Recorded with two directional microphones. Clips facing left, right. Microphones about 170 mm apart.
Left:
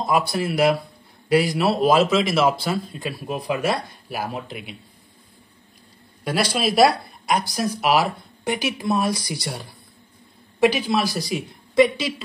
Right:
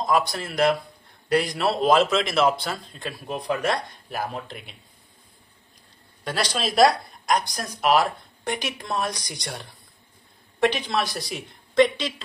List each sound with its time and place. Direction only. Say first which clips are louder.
0.0 s a man's voice: left 2 dB; 10° left (ahead or behind)
6.2 s a man's voice: left 5 dB; 10° left (ahead or behind)